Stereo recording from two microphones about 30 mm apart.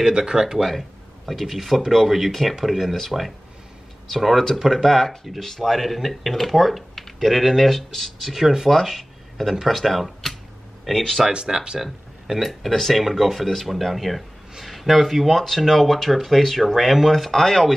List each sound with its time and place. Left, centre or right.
0.0 s speech: right
0.7 s a sound: centre
1.4 s speech: centre
4.8 s speech: centre
7.6 s speech: centre
8.3 s speech: centre
8.6 s speech: centre
11.2 s speech: right
11.8 s speech: centre
12.7 s speech: centre
13.0 s speech: centre
16.7 s speech: centre
17.3 s speech: centre